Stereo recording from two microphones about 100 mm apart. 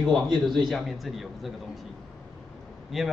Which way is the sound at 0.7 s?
Centre (ahead or behind).